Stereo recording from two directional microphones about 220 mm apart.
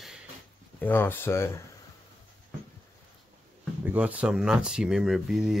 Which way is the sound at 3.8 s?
5° right (ahead or behind).